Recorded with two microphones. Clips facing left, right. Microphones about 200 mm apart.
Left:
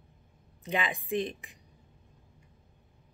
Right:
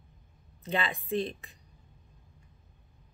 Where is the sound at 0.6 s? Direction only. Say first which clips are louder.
Even; 15° left (ahead or behind).